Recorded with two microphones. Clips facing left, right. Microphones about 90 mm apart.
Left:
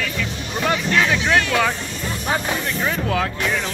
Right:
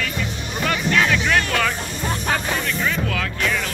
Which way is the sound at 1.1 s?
25° left (ahead or behind).